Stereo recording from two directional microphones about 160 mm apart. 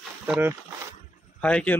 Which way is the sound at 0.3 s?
10° right (ahead or behind).